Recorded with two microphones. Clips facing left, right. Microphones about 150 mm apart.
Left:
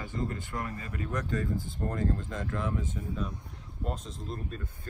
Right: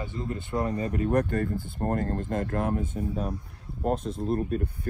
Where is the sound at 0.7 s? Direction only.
40° right (ahead or behind); by 4.6 s 55° right (ahead or behind).